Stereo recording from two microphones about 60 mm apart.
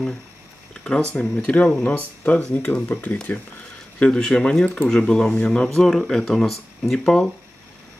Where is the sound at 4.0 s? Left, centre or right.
Centre.